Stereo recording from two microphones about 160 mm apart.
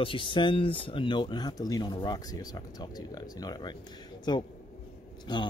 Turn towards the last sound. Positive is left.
turn(degrees=30)  # may be behind; listen again after turning